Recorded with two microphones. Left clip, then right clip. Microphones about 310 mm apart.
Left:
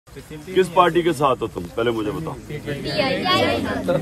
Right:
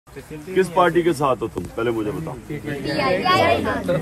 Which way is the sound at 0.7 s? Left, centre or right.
Centre.